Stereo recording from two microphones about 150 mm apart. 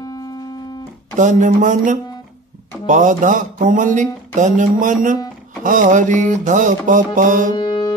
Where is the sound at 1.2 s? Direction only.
55° right (ahead or behind).